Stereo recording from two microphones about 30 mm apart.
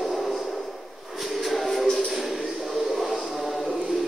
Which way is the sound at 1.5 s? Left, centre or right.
Centre.